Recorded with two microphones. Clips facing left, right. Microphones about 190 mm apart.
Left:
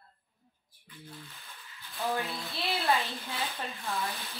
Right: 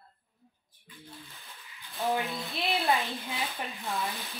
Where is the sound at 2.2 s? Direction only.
15° right (ahead or behind).